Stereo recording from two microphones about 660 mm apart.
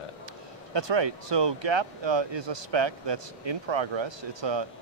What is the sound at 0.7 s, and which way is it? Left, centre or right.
Speech, right.